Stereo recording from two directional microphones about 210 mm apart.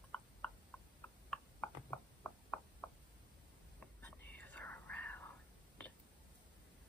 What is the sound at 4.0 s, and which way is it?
Whispering, 10° left (ahead or behind).